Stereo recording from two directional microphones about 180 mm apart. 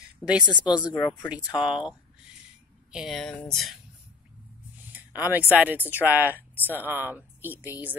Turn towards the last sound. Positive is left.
turn(degrees=-10)  # may be behind; listen again after turning